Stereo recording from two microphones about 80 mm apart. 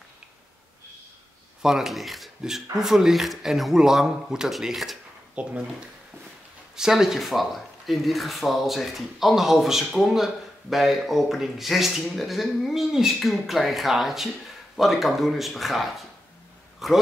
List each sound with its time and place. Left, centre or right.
1.6 s speech: centre
5.3 s speech: centre
6.8 s speech: centre